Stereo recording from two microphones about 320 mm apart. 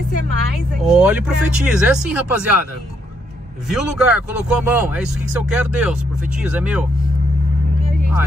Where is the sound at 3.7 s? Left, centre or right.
Centre.